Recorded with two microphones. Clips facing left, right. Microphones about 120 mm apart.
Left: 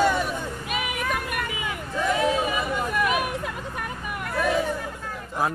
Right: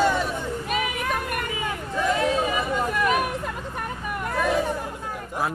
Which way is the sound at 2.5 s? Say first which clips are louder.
Right 1 dB; 10° left (ahead or behind).